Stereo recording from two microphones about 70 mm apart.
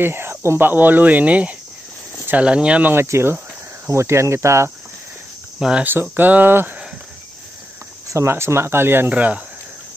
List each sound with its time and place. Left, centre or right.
0.0 s speech: right; by 2.9 s centre
2.9 s speech: right
5.6 s speech: centre
5.9 s speech: right
8.1 s speech: right
9.1 s speech: centre